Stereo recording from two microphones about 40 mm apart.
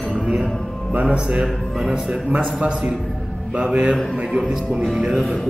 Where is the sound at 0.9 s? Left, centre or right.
Right.